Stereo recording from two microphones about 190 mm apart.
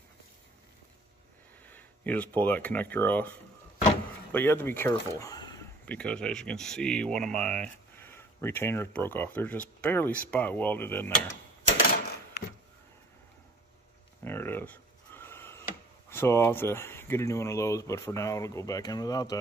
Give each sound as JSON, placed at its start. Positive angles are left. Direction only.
{"t": 1.7, "sound": "speech", "side_deg": 10}
{"t": 5.9, "sound": "speech", "side_deg": 5}
{"t": 14.2, "sound": "a sound", "side_deg": 10}
{"t": 16.1, "sound": "speech", "side_deg": 15}